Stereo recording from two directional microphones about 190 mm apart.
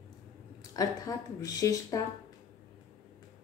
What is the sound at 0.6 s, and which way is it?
Speech, 20° left (ahead or behind).